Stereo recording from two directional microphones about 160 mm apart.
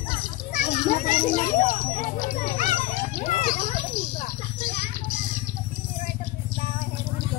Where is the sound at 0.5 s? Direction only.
55° left (ahead or behind).